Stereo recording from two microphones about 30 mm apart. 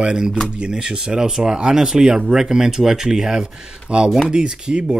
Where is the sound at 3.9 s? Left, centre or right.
Right.